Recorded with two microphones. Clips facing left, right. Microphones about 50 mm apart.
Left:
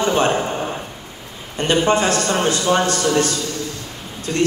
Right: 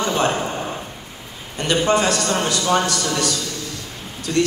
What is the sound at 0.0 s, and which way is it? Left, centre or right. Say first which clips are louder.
Speech: left 2 dB; left.